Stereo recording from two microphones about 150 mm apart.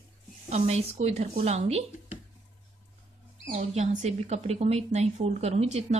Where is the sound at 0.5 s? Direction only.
45° right (ahead or behind).